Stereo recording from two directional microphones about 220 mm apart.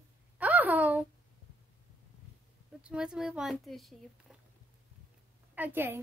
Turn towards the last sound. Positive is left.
turn(degrees=-10)  # may be behind; listen again after turning